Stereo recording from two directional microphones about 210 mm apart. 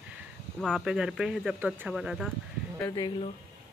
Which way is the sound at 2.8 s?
15° left (ahead or behind).